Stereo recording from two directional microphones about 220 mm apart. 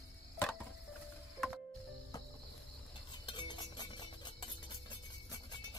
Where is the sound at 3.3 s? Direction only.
20° left (ahead or behind).